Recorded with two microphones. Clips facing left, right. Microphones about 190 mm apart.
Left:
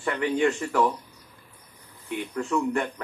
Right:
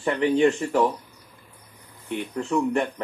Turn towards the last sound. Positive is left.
turn(degrees=-30)  # may be behind; listen again after turning